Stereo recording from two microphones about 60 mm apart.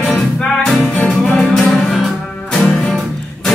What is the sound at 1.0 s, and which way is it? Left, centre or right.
Music, centre.